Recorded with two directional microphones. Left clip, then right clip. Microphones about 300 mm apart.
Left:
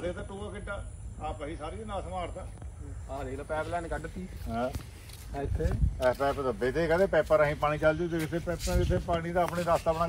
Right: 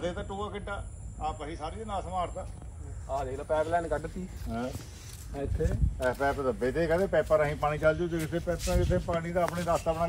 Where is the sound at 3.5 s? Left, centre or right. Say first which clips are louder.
Right 5 dB; right.